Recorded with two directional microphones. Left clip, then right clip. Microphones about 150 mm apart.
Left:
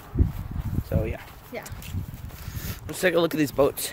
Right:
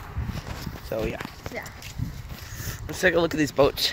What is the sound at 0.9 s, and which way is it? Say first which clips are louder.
Speech: right 2 dB; 35° right (ahead or behind).